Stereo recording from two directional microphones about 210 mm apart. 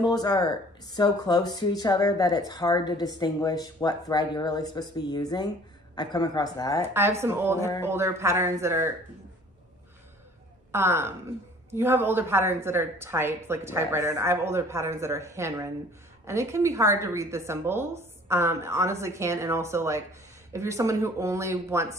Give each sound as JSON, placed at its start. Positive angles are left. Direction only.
{"t": 0.0, "sound": "speech", "side_deg": 20}
{"t": 6.9, "sound": "a woman's voice", "side_deg": -10}
{"t": 10.7, "sound": "a woman's voice", "side_deg": -10}